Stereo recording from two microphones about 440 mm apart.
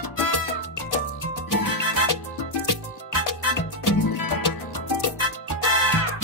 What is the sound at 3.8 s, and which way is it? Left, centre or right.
Music, left.